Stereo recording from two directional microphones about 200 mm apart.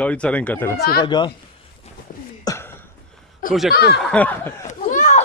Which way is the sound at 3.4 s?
45° left (ahead or behind).